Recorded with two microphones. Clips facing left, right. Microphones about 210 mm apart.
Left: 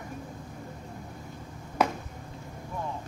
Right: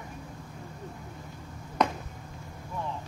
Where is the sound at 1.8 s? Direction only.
5° left (ahead or behind).